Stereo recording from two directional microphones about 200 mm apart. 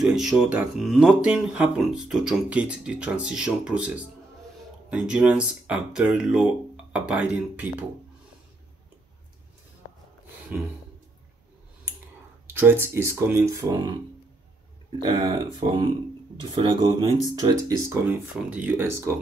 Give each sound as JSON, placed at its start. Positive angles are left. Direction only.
{"t": 0.0, "sound": "speech", "side_deg": 0}
{"t": 10.5, "sound": "speech", "side_deg": -10}
{"t": 12.4, "sound": "speech", "side_deg": -10}
{"t": 18.2, "sound": "speech", "side_deg": -5}